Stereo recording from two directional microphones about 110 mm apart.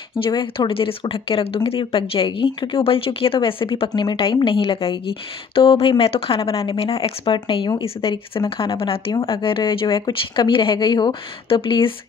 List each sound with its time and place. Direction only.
0.2 s speech: 50° left (ahead or behind)
7.3 s speech: 50° left (ahead or behind)